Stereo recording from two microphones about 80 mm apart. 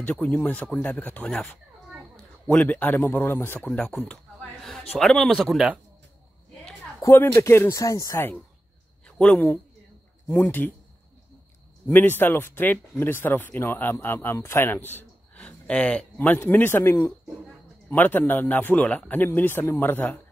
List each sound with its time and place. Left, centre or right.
0.0 s speech: centre
2.4 s speech: centre
4.1 s a sound: centre
5.4 s speech: centre
7.0 s a sound: left
7.3 s speech: left
7.8 s speech: left
9.0 s speech: centre
10.2 s speech: left
11.9 s speech: left
15.3 s speech: centre